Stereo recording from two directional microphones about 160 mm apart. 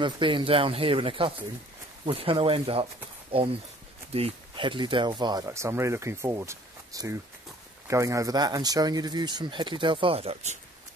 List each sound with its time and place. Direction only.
0.0 s speech: 30° right (ahead or behind)